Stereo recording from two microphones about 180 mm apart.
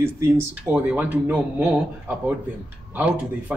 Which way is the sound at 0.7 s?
10° right (ahead or behind).